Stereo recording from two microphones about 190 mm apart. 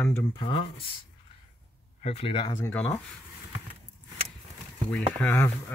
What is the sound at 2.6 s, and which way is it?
Speech, 10° left (ahead or behind).